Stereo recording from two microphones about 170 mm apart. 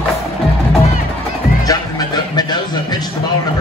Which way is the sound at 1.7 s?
25° left (ahead or behind).